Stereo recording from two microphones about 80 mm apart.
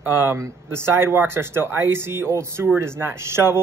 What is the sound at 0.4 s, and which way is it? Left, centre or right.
Speech, right.